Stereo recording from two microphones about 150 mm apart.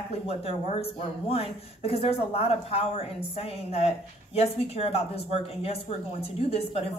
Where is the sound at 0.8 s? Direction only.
40° left (ahead or behind).